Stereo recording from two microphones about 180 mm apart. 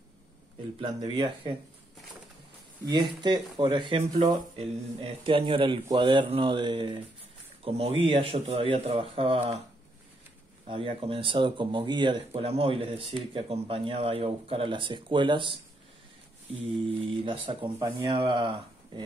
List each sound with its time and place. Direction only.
0.7 s speech: 25° right (ahead or behind)
2.9 s speech: 25° right (ahead or behind)
10.7 s speech: 30° right (ahead or behind)
17.2 s speech: 30° right (ahead or behind)